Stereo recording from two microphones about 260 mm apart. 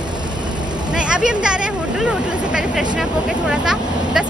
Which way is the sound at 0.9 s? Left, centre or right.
Centre.